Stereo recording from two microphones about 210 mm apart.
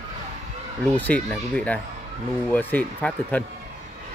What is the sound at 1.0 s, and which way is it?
Speech, 5° left (ahead or behind).